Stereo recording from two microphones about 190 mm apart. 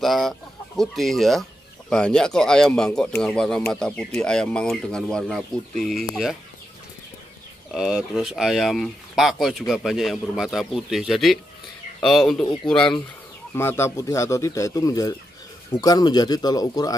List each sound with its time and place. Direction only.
0.0 s speech: centre (ahead or behind)
7.7 s speech: 5° right (ahead or behind); by 16.9 s 20° left (ahead or behind)